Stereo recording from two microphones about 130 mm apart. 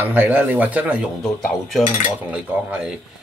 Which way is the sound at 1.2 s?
Centre (ahead or behind).